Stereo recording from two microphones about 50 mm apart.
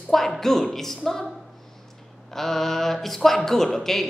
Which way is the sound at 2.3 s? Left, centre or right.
Centre.